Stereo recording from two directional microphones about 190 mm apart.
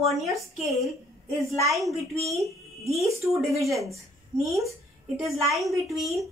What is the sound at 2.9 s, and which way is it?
Speech, 15° right (ahead or behind).